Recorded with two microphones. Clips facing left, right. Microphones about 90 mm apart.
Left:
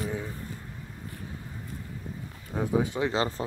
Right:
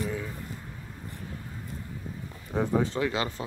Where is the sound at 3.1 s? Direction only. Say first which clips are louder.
Left 3 dB; 35° left (ahead or behind).